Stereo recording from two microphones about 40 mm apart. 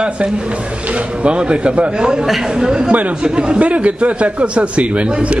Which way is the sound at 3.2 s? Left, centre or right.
Right.